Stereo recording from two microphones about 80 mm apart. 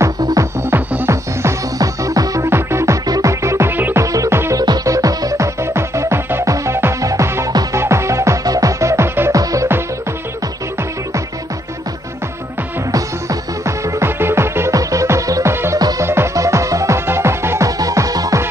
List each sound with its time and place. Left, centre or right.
0.2 s music: right
0.6 s music: right
1.8 s music: right
2.4 s music: right
3.7 s music: right
4.0 s music: right
4.6 s music: right
9.3 s music: right
12.9 s music: right
14.7 s music: right
15.5 s music: right
17.6 s music: right